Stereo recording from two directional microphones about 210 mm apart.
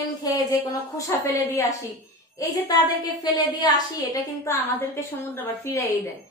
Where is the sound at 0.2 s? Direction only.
15° left (ahead or behind).